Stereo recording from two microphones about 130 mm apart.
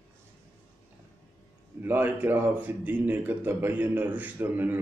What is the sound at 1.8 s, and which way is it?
Speech, 15° right (ahead or behind).